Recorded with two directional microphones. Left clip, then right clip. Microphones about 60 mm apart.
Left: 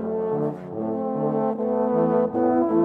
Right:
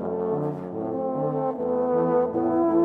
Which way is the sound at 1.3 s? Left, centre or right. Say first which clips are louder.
Left 2 dB; left.